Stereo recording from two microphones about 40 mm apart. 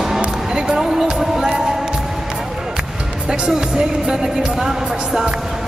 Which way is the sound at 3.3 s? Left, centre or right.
Centre.